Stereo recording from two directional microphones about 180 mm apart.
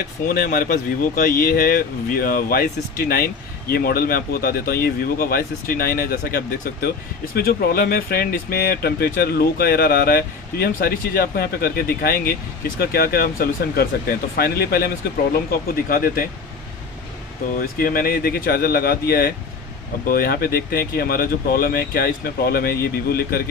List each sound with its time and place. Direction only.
0.3 s speech: 50° left (ahead or behind)
17.6 s speech: 50° left (ahead or behind)